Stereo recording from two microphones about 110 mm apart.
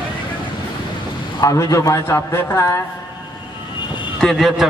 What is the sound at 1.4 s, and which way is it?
A man's voice, 30° left (ahead or behind).